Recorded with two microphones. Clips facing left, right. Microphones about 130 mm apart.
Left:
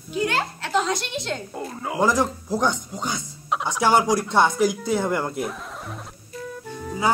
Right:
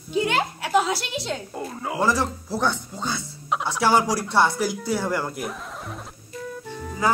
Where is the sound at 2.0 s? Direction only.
15° left (ahead or behind).